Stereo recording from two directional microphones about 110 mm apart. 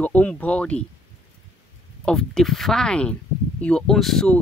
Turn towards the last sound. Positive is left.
turn(degrees=5)  # may be behind; listen again after turning